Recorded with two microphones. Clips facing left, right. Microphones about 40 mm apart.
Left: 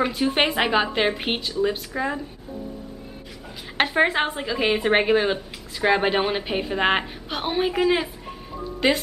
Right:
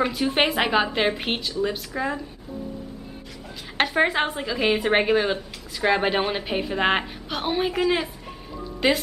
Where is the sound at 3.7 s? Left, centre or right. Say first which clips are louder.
Left 1 dB; centre.